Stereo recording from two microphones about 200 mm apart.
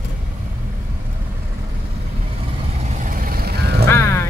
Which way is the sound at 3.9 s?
15° left (ahead or behind).